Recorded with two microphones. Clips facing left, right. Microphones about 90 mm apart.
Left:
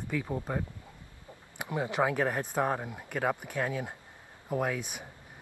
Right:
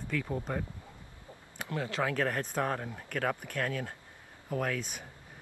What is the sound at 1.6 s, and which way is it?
Speech, 20° left (ahead or behind).